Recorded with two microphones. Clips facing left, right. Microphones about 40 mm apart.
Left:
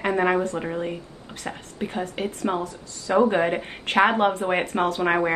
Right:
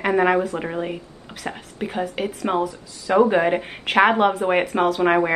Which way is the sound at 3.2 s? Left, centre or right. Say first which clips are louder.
Right 3 dB; centre.